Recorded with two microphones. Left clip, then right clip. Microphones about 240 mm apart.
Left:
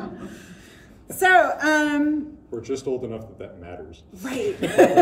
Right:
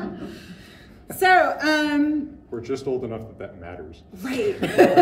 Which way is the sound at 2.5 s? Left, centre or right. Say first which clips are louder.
Even; centre.